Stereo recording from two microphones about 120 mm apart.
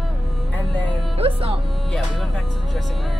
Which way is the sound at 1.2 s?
55° right (ahead or behind).